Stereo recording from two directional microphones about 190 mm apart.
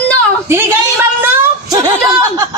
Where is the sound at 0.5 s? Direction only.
10° right (ahead or behind).